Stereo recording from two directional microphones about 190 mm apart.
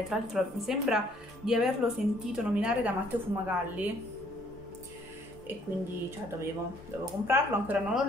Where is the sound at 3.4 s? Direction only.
10° right (ahead or behind).